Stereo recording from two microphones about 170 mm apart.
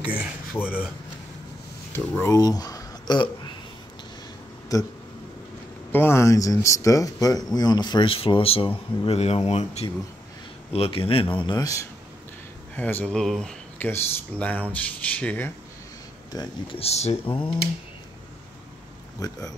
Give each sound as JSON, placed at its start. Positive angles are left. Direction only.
{"t": 0.0, "sound": "speech", "side_deg": -5}
{"t": 1.9, "sound": "speech", "side_deg": 15}
{"t": 4.7, "sound": "speech", "side_deg": 20}
{"t": 12.7, "sound": "speech", "side_deg": 10}
{"t": 16.3, "sound": "speech", "side_deg": 25}
{"t": 19.1, "sound": "speech", "side_deg": 20}